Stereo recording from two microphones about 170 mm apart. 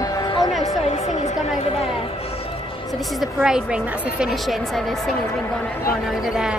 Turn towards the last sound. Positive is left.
turn(degrees=-5)  # may be behind; listen again after turning